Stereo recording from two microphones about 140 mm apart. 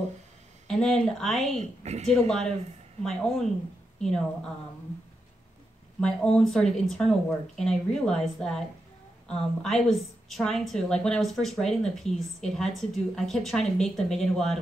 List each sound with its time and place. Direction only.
0.7 s a woman's voice: 5° left (ahead or behind)
1.6 s a woman's voice: 50° right (ahead or behind)
2.1 s a woman's voice: 5° left (ahead or behind)
5.9 s a woman's voice: 5° left (ahead or behind)